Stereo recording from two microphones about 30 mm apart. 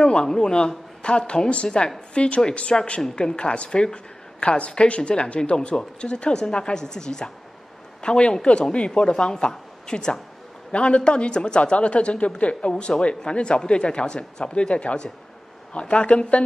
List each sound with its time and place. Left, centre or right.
0.0 s a man's voice: left
2.1 s speech: left
2.7 s a woman's voice: left
5.1 s a woman's voice: left
12.7 s speech: left